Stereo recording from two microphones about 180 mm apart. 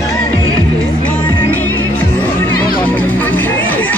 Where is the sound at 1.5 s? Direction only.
10° left (ahead or behind).